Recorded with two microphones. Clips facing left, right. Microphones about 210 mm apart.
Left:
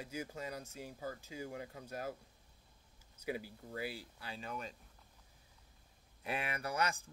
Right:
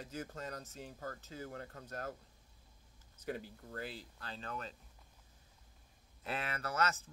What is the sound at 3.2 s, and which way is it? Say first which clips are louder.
Speech: left 1 dB; 10° left (ahead or behind).